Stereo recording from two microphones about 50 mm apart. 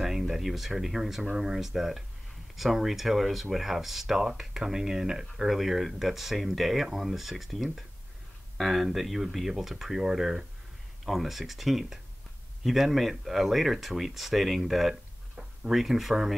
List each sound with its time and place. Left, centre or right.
0.0 s speech: centre